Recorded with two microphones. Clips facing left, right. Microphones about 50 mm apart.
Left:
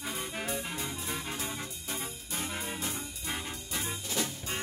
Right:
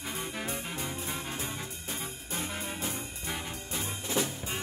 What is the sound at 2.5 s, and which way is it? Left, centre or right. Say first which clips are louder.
Music: even; centre.